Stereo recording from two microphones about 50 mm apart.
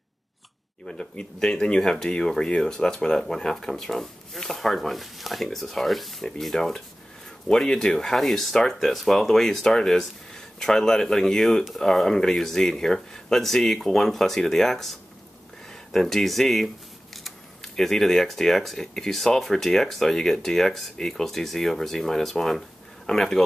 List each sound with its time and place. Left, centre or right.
0.8 s speech: centre